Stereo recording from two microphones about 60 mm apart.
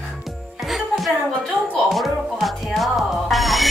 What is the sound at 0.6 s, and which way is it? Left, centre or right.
Music, centre.